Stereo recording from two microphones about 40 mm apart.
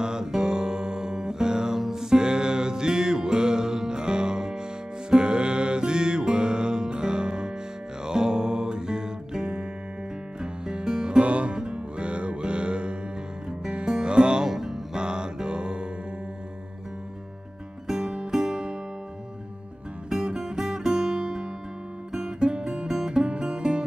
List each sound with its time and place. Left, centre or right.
0.0 s music: centre
17.8 s music: centre
20.1 s music: centre